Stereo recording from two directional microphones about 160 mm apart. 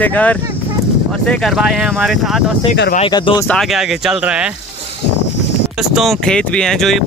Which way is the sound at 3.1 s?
25° left (ahead or behind).